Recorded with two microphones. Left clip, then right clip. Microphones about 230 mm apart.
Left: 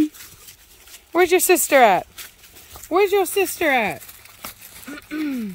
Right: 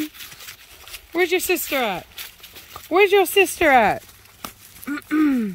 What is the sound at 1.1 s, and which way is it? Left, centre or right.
Speech, centre.